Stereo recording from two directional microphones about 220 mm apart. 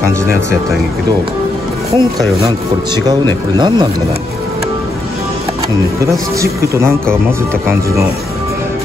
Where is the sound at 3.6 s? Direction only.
20° right (ahead or behind).